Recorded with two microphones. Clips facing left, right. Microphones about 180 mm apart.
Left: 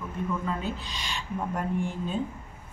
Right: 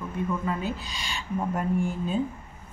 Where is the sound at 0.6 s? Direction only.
5° right (ahead or behind).